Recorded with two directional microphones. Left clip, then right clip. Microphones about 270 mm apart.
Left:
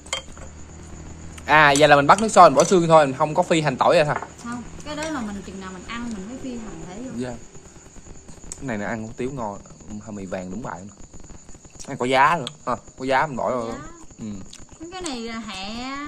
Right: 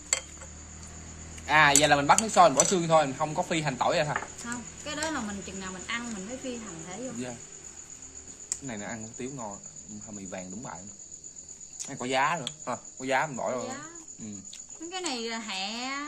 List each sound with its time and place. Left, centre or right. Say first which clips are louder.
1.4 s speech: left 7 dB; left
4.5 s a sound: left 4 dB; centre
8.5 s speech: left 9 dB; left
11.8 s speech: left 10 dB; left
14.9 s a woman's voice: left 2 dB; centre